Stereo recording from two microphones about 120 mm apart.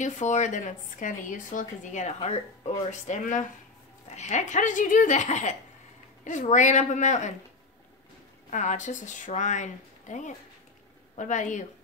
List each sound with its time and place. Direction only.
0.0 s speech: 85° left
2.1 s speech: 55° left (ahead or behind); by 3.4 s 90° left
4.1 s speech: 75° left (ahead or behind)
8.5 s speech: 85° left